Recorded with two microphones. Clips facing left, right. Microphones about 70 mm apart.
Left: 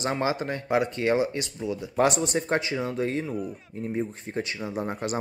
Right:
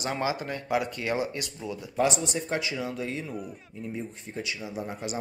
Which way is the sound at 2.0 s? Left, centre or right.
Left.